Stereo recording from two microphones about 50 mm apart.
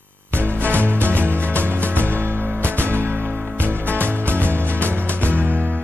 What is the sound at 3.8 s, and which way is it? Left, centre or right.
Music, left.